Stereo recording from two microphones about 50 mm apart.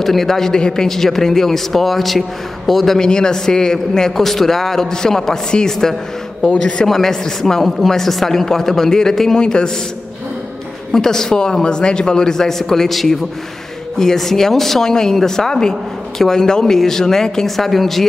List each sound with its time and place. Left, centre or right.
0.0 s a man's voice: centre
6.4 s a man's voice: left
6.9 s a man's voice: centre
10.9 s a man's voice: centre